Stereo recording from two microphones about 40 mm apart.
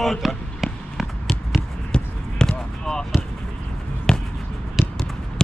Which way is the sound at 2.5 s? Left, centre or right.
Centre.